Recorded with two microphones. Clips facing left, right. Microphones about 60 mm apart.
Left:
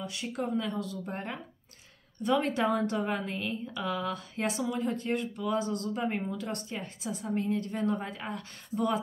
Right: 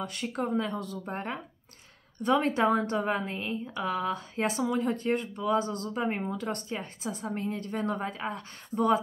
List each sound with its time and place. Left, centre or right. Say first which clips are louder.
0.0 s a woman's voice: right 2 dB; right